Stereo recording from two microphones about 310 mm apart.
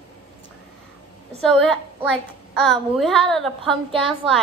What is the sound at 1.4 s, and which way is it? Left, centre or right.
A woman's voice, centre.